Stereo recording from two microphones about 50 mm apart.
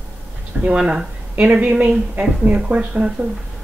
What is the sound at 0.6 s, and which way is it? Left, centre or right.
Speech, right.